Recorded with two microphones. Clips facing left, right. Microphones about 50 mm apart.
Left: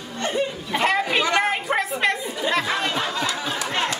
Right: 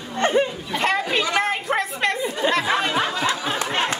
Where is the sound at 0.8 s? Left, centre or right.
Centre.